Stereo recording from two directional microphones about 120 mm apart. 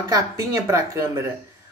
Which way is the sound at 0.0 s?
30° right (ahead or behind).